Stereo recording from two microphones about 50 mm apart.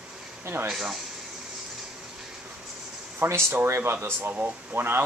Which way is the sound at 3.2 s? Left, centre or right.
Right.